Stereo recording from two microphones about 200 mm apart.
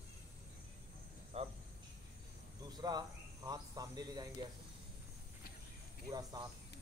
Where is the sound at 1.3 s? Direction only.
30° right (ahead or behind).